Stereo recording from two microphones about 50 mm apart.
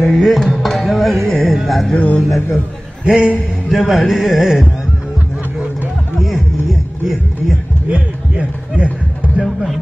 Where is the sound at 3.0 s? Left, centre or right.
Right.